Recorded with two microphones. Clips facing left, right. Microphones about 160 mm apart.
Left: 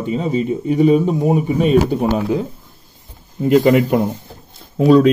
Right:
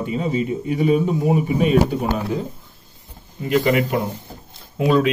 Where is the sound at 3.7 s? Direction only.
Centre (ahead or behind).